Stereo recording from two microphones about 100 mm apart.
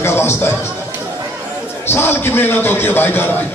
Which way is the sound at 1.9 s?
25° left (ahead or behind).